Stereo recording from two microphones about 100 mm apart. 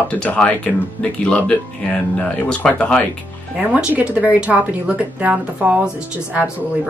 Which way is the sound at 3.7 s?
15° right (ahead or behind).